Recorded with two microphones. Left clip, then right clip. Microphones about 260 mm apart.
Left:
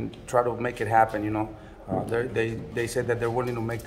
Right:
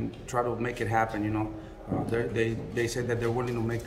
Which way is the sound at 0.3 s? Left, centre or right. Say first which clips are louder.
Left 5 dB; centre.